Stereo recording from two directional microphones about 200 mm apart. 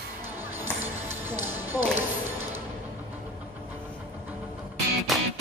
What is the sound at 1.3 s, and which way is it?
Music, 10° right (ahead or behind).